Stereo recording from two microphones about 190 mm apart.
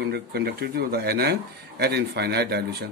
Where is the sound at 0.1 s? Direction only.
55° right (ahead or behind).